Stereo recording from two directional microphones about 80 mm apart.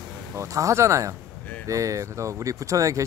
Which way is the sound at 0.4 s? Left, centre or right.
Right.